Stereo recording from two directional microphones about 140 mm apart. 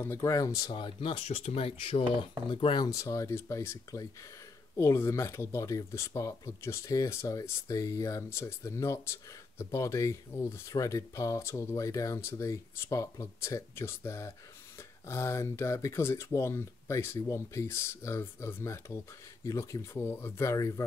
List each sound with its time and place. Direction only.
0.0 s speech: 20° left (ahead or behind)